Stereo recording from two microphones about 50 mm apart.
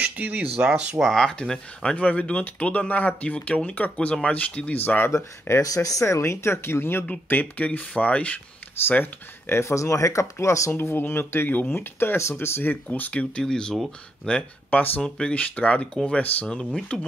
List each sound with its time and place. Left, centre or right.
0.0 s speech: right
1.0 s speech: centre
2.0 s speech: left
5.1 s speech: left
7.2 s speech: left
7.6 s speech: left
8.8 s speech: left
9.6 s speech: left
10.8 s speech: left
12.8 s speech: left
13.4 s speech: centre; by 16.4 s left
16.9 s speech: centre